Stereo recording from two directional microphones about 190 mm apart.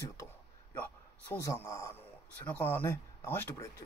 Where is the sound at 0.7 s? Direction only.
10° left (ahead or behind).